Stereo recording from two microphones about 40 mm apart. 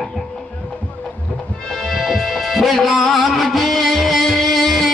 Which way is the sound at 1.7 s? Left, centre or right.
Centre.